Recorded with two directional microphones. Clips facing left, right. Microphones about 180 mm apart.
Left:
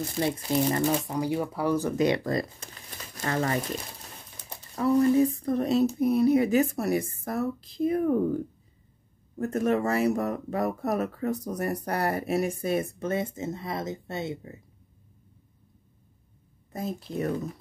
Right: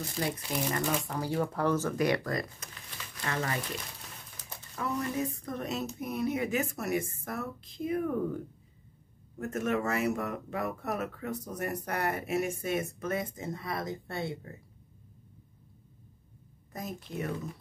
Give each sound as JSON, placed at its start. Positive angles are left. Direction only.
{"t": 0.4, "sound": "speech", "side_deg": 30}
{"t": 1.0, "sound": "speech", "side_deg": 15}
{"t": 9.4, "sound": "speech", "side_deg": 35}
{"t": 16.7, "sound": "speech", "side_deg": 30}